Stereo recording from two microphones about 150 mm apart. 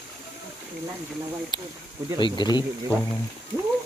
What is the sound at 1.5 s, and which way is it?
Speech, 30° left (ahead or behind).